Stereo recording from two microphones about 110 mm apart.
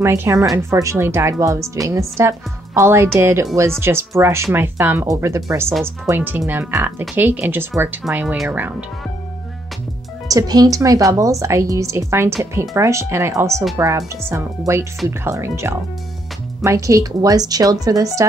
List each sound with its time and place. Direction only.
0.0 s a woman's voice: 25° right (ahead or behind)
10.2 s a woman's voice: 35° right (ahead or behind)